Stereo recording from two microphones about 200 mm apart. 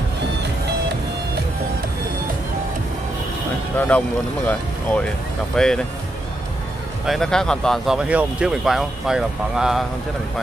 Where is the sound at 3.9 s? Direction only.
5° left (ahead or behind).